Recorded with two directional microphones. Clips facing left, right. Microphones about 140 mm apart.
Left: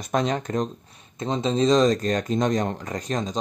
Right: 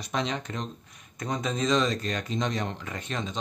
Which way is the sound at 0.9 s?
25° left (ahead or behind).